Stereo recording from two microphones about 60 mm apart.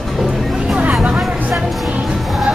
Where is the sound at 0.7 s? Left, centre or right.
Right.